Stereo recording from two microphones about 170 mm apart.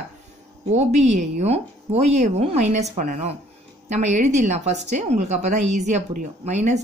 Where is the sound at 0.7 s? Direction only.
40° right (ahead or behind).